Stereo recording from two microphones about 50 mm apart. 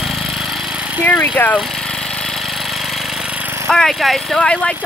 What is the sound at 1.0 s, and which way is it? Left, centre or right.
Vehicle, left.